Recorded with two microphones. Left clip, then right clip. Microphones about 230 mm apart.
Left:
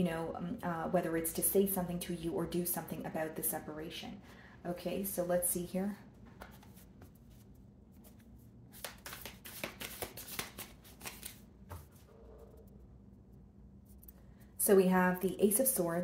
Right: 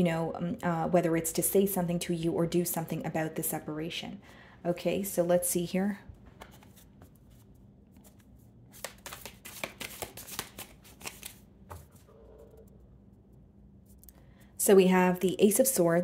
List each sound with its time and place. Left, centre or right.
0.0 s speech: right
9.6 s a sound: right
14.6 s speech: right